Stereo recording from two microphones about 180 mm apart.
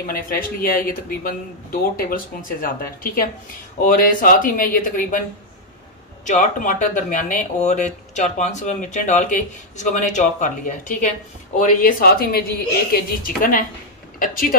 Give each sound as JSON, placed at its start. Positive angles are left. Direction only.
{"t": 0.0, "sound": "speech", "side_deg": 50}
{"t": 6.2, "sound": "speech", "side_deg": 45}